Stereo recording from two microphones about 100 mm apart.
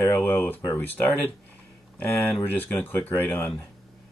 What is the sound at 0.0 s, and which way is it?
Speech, 25° left (ahead or behind).